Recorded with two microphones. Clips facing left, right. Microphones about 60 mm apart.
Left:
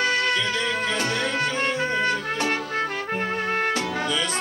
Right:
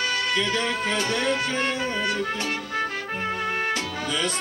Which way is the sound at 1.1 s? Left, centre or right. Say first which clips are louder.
Even; left.